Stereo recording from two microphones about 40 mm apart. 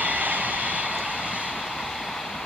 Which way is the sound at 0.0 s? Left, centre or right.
Right.